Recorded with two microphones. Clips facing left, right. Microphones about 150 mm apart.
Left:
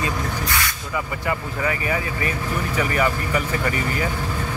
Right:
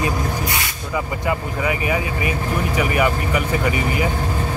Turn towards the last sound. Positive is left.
turn(degrees=-10)  # may be behind; listen again after turning